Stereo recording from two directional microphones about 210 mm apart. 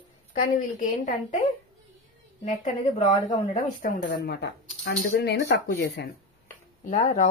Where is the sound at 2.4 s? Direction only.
35° left (ahead or behind).